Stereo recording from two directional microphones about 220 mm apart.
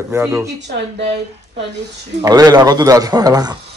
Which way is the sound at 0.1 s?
10° right (ahead or behind).